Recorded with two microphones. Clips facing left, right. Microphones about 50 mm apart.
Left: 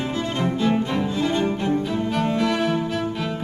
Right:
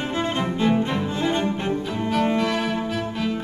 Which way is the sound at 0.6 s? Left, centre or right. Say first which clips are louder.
Right 1 dB; centre.